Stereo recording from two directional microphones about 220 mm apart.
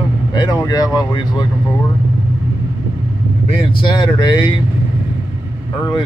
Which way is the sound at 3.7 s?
20° left (ahead or behind).